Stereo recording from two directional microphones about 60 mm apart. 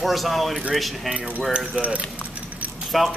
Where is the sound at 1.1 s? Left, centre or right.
Right.